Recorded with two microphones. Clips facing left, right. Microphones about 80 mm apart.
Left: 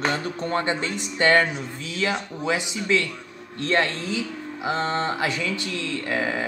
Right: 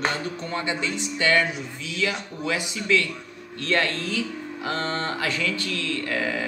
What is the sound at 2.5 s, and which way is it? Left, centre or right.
Speech, left.